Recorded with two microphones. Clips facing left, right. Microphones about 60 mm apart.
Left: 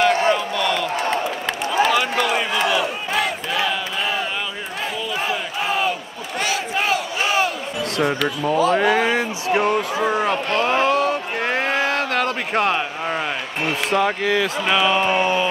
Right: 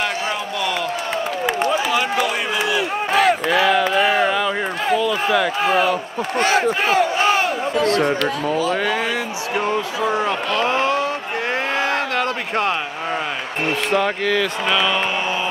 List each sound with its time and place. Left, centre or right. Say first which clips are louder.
1.9 s run: even; centre
3.2 s battle cry: right 7 dB; right
4.9 s a sound: right 8 dB; right
6.4 s speech: right 4 dB; right
8.0 s speech: right 1 dB; centre
8.8 s speech: left 3 dB; left
10.7 s a sound: left 1 dB; left
13.9 s speech: left 1 dB; centre
15.0 s mantra: left 4 dB; left